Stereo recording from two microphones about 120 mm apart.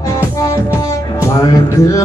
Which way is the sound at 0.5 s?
25° left (ahead or behind).